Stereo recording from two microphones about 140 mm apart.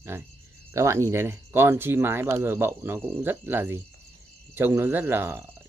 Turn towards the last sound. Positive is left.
turn(degrees=-15)  # may be behind; listen again after turning